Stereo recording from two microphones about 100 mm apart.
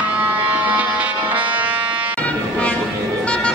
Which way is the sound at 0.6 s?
15° right (ahead or behind).